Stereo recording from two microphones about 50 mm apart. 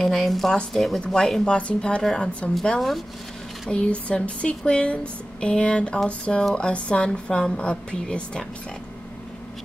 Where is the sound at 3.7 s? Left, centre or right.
Left.